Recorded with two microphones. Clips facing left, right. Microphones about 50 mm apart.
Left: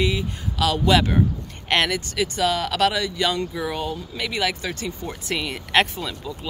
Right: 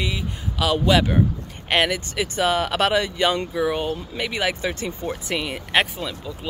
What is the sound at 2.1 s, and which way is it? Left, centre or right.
Speech, right.